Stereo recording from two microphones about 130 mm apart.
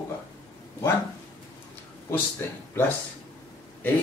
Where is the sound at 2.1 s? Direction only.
15° left (ahead or behind).